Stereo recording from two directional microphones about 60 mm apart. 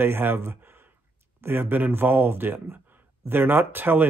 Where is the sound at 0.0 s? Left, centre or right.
Right.